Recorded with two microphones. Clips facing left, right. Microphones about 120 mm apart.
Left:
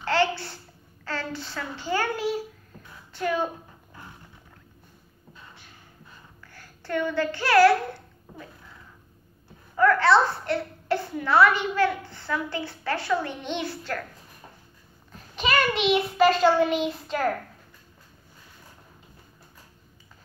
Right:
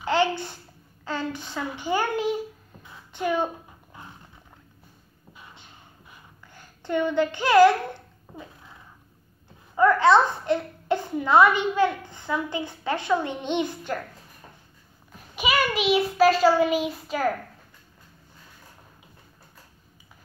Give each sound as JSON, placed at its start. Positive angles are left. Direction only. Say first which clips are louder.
{"t": 0.0, "sound": "a sound", "louder": "right 1 dB", "side_deg": -15}
{"t": 1.0, "sound": "a child's voice", "louder": "right 2 dB", "side_deg": -15}
{"t": 5.3, "sound": "a sound", "louder": "right 1 dB", "side_deg": -15}
{"t": 6.5, "sound": "a child's voice", "louder": "right 2 dB", "side_deg": -20}
{"t": 9.8, "sound": "a child's voice", "louder": "right 2 dB", "side_deg": -20}
{"t": 15.3, "sound": "child singing", "louder": "even", "side_deg": -10}